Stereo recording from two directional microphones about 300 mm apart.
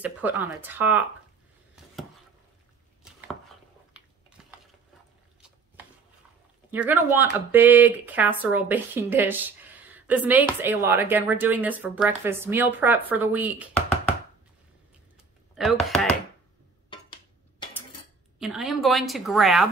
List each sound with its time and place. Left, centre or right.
0.0 s speech: centre
3.0 s chopping: centre
4.4 s a sound: centre
6.7 s speech: centre
15.5 s speech: centre
16.9 s a sound: centre
18.4 s speech: centre